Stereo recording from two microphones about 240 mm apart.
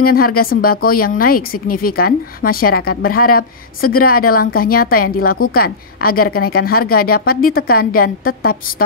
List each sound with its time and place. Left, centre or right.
0.0 s speech: left